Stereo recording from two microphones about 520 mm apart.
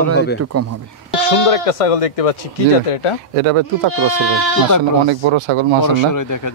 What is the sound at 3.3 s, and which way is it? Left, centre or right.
Speech, right.